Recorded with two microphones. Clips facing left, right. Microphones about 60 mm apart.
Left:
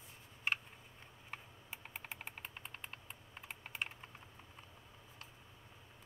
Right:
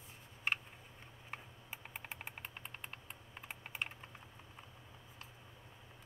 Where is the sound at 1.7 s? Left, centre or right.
Centre.